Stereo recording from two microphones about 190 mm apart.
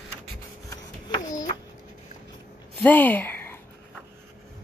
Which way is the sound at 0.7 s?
20° left (ahead or behind).